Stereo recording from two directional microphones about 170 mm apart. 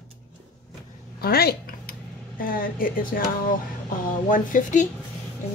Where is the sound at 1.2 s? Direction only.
65° left (ahead or behind).